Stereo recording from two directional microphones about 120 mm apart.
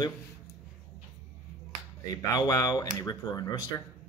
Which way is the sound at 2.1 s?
35° left (ahead or behind).